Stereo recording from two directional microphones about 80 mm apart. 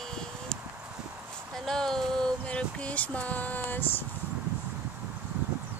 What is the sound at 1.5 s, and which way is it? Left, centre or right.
Speech, centre.